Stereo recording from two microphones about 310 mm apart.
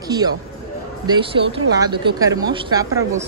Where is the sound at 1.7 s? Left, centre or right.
Centre.